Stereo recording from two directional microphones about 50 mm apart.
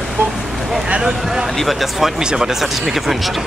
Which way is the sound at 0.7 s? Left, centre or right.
Centre.